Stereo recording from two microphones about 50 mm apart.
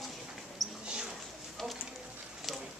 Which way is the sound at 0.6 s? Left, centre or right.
Centre.